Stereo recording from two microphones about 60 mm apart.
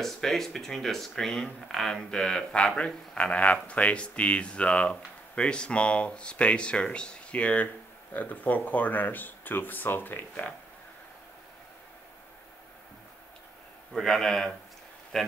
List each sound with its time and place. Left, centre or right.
0.0 s speech: centre; by 10.5 s left
13.9 s a man's voice: centre